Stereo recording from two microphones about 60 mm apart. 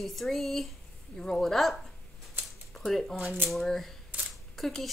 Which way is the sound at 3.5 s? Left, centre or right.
Centre.